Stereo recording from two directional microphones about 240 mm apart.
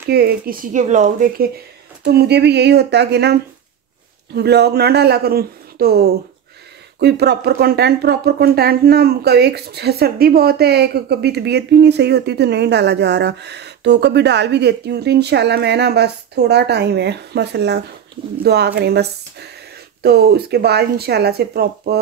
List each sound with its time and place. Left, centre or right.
0.0 s speech: right
2.0 s speech: right
4.4 s speech: right